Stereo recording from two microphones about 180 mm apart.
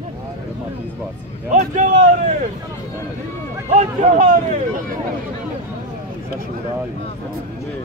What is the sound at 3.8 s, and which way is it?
Speech, 45° right (ahead or behind).